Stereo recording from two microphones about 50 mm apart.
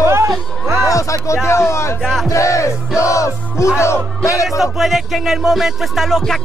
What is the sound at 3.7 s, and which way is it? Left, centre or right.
Music, left.